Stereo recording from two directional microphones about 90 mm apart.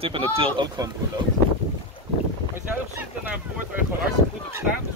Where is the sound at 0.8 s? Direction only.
45° right (ahead or behind).